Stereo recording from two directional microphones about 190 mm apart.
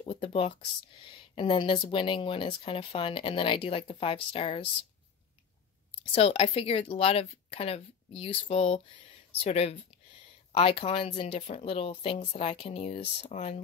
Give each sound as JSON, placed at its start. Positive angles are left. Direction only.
{"t": 0.0, "sound": "speech", "side_deg": 30}
{"t": 6.1, "sound": "speech", "side_deg": 30}